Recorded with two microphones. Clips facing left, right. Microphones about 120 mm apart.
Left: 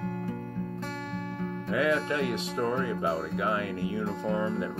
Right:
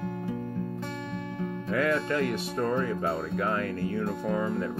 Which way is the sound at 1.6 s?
15° left (ahead or behind).